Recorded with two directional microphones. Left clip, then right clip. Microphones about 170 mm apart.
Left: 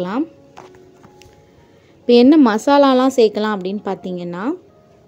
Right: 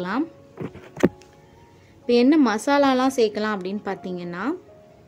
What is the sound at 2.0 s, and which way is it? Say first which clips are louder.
A woman's voice: left 7 dB; 30° left (ahead or behind).